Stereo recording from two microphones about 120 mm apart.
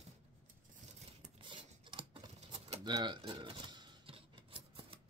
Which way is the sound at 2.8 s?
40° right (ahead or behind).